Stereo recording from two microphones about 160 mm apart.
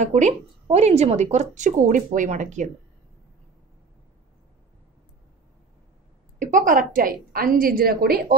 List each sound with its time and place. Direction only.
0.0 s speech: 45° right (ahead or behind)
6.4 s a woman's voice: 55° right (ahead or behind)